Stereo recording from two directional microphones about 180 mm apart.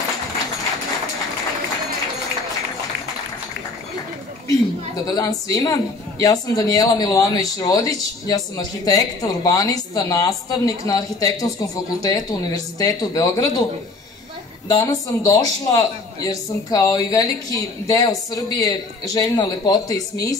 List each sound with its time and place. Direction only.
5.0 s a man's voice: 20° left (ahead or behind)
14.7 s a man's voice: 20° left (ahead or behind)